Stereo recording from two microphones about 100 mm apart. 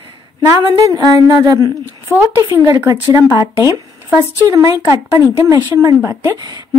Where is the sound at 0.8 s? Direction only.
35° right (ahead or behind).